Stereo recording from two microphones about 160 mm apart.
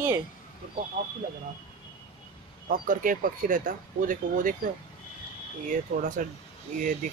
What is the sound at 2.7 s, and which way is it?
Speech, 60° right (ahead or behind).